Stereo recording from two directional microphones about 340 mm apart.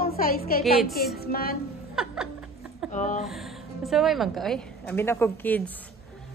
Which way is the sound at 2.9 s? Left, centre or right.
Left.